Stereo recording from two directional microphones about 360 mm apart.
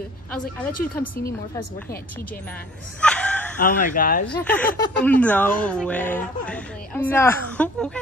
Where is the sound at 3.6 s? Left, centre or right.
Left.